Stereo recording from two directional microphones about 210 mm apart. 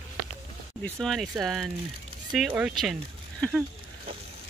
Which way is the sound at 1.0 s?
Centre (ahead or behind).